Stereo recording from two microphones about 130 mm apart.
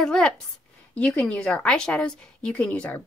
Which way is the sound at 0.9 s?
5° left (ahead or behind).